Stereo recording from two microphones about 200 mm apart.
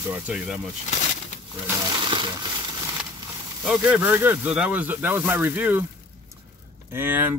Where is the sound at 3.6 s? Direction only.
5° right (ahead or behind).